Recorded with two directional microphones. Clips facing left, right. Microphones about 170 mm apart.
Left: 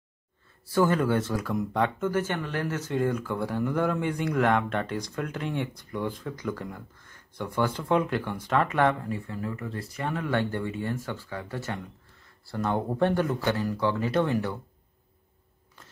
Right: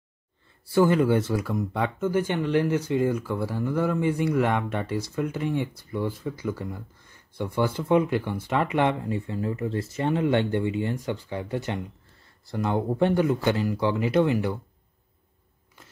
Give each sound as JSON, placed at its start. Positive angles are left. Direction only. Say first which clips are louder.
{"t": 0.7, "sound": "speech", "louder": "right 3 dB", "side_deg": -10}